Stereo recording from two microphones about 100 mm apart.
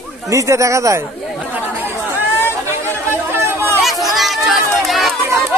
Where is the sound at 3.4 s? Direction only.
25° right (ahead or behind).